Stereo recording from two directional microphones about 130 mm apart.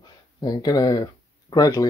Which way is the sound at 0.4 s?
30° left (ahead or behind).